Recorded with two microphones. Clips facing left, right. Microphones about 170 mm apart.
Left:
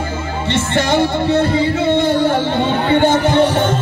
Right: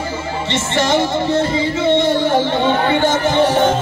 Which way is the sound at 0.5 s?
55° left (ahead or behind).